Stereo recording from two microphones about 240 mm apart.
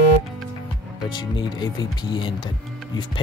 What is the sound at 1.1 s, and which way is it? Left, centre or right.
Speech, centre.